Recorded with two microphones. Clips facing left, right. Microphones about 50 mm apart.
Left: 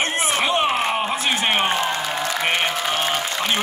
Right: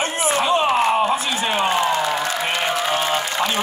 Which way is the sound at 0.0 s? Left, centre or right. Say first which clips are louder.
Right 1 dB; left.